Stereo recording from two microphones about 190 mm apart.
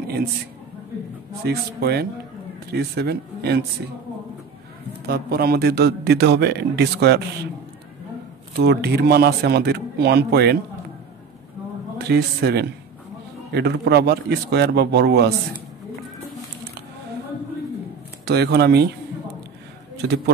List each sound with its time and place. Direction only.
1.4 s a man's voice: 60° right (ahead or behind)
5.0 s a man's voice: 55° right (ahead or behind)
8.5 s a man's voice: 60° right (ahead or behind)
12.1 s a man's voice: 60° right (ahead or behind)
18.2 s a man's voice: 60° right (ahead or behind)